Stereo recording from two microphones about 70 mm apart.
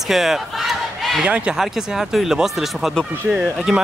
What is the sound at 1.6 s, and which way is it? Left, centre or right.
Speech, centre.